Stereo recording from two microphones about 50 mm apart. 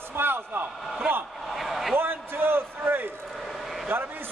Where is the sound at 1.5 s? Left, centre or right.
Centre.